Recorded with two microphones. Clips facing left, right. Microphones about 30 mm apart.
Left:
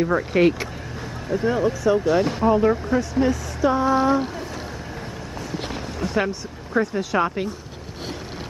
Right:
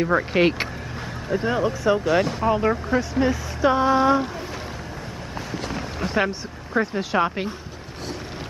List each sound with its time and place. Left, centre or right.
0.0 s speech: right
1.3 s speech: centre
3.6 s speech: right
5.9 s speech: centre